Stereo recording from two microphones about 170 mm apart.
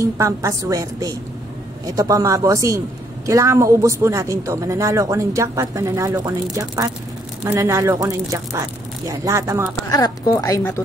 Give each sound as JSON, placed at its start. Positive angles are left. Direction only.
{"t": 0.0, "sound": "speech", "side_deg": -20}
{"t": 9.8, "sound": "a woman's voice", "side_deg": 20}